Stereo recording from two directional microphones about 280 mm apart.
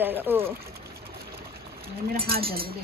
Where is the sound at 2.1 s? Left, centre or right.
Right.